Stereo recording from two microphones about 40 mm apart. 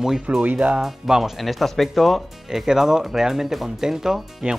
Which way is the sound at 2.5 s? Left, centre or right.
Centre.